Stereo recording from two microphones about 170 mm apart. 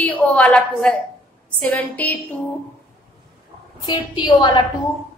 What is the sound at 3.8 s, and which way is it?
Speech, 25° left (ahead or behind).